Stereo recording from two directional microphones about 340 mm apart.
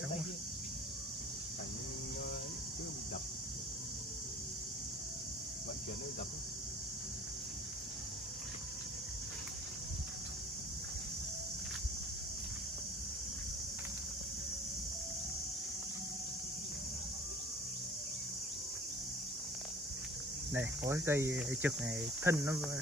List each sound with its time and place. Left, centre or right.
20.5 s speech: centre